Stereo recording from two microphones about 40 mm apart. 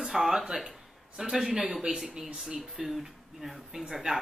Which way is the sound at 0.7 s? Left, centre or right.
Centre.